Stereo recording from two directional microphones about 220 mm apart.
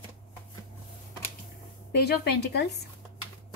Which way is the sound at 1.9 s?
45° left (ahead or behind).